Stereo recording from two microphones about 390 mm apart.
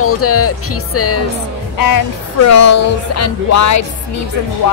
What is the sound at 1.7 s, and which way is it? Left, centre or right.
A woman's voice, left.